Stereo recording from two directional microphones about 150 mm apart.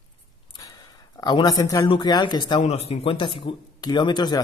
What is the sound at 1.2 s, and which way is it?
Speech, 25° left (ahead or behind).